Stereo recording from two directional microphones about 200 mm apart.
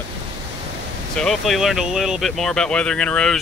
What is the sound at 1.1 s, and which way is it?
Speech, centre (ahead or behind).